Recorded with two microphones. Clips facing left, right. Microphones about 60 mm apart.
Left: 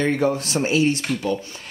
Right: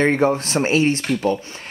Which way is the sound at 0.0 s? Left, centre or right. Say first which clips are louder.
Right 3 dB; right.